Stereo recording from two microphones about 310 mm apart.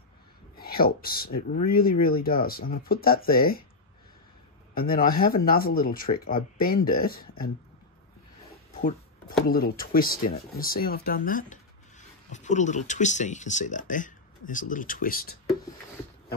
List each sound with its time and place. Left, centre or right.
0.6 s speech: left
4.7 s speech: left
9.5 s speech: left